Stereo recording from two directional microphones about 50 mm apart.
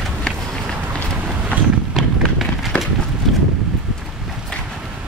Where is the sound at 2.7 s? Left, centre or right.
Left.